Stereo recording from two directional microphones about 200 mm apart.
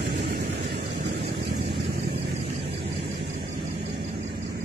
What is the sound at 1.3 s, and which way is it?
Vehicle, 60° right (ahead or behind).